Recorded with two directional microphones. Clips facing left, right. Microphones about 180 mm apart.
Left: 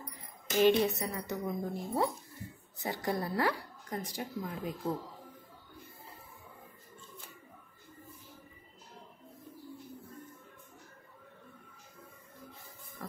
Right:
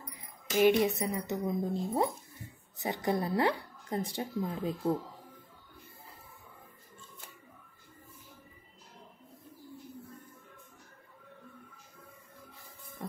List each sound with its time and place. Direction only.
0.6 s speech: 15° right (ahead or behind)